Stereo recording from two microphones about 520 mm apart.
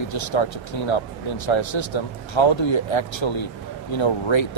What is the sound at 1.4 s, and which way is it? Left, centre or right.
Speech, left.